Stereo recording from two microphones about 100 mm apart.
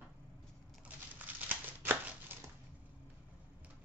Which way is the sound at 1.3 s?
20° right (ahead or behind).